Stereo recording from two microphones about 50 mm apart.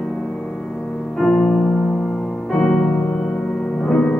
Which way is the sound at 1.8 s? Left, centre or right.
Left.